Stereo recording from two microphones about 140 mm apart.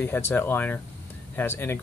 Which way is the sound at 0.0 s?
15° left (ahead or behind).